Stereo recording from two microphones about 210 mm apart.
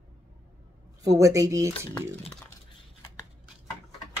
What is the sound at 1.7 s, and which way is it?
Speech, 15° left (ahead or behind).